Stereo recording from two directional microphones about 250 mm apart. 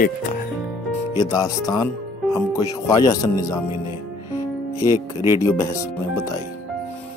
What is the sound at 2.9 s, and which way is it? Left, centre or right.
Speech, centre.